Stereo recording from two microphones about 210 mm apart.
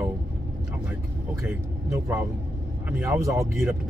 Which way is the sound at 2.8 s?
15° right (ahead or behind).